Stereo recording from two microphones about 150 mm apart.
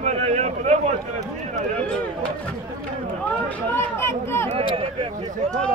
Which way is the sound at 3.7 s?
15° left (ahead or behind).